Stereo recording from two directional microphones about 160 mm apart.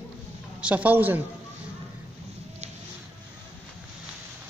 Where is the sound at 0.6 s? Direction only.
10° right (ahead or behind).